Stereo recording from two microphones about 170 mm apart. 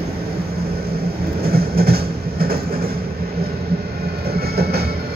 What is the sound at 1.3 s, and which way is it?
Train, 65° right (ahead or behind).